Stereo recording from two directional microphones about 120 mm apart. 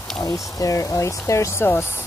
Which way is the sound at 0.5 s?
30° left (ahead or behind).